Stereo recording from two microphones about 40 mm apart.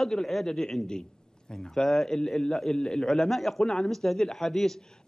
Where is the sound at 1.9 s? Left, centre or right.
Centre.